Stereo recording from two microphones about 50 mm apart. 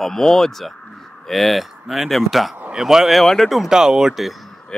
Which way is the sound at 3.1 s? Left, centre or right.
Centre.